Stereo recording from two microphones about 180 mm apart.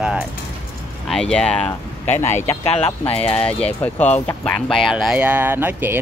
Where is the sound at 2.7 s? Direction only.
35° left (ahead or behind).